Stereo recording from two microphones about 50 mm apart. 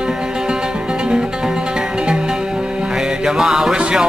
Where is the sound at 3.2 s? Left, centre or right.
Centre.